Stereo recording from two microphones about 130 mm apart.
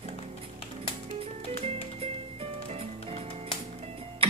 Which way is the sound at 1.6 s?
50° right (ahead or behind).